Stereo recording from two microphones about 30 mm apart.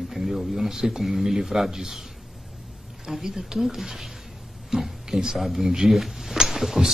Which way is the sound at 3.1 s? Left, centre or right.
Centre.